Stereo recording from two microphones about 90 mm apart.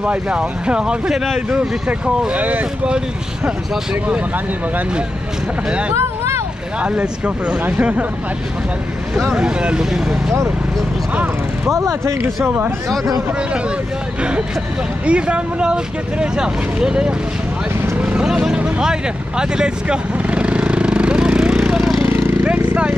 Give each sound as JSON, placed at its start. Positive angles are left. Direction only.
{"t": 0.0, "sound": "speech", "side_deg": -15}
{"t": 5.7, "sound": "speech", "side_deg": -10}
{"t": 9.1, "sound": "speech", "side_deg": -10}
{"t": 11.7, "sound": "speech", "side_deg": -35}
{"t": 15.0, "sound": "speech", "side_deg": -10}
{"t": 18.0, "sound": "vehicle", "side_deg": -10}
{"t": 22.4, "sound": "a sound", "side_deg": -15}